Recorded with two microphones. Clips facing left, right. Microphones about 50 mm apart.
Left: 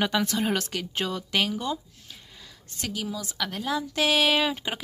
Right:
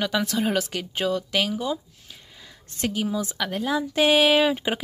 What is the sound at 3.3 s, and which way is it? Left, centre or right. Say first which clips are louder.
Speech: right 1 dB; centre.